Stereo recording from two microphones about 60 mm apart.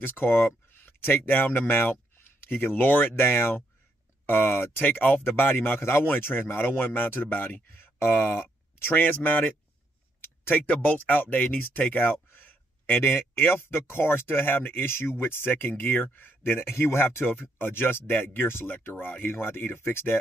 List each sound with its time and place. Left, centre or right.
0.0 s speech: left
10.2 s a sound: left
10.8 s speech: left